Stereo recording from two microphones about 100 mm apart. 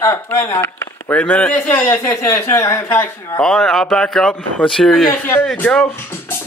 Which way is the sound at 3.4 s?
5° left (ahead or behind).